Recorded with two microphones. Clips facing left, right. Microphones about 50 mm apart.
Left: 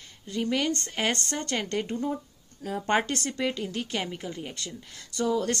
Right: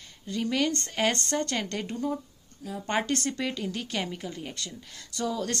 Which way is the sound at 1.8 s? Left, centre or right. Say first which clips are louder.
Left 1 dB; centre.